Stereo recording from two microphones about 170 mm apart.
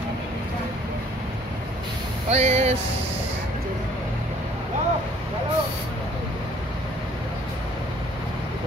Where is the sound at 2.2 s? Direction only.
40° right (ahead or behind).